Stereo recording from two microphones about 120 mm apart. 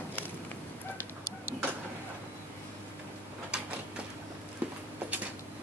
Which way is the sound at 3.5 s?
10° right (ahead or behind).